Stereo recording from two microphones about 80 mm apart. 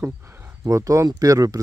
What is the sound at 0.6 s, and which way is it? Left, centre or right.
Speech, right.